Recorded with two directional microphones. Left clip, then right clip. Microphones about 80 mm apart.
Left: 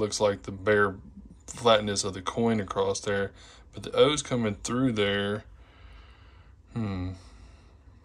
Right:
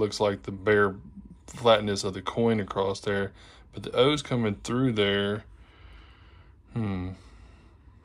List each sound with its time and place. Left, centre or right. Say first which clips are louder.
0.0 s speech: even; left
6.7 s speech: right 1 dB; left